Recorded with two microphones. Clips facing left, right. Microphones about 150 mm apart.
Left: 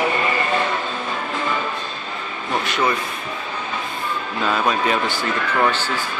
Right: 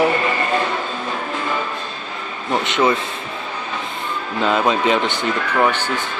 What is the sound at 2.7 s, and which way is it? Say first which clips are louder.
Speech: right 4 dB; 20° right (ahead or behind).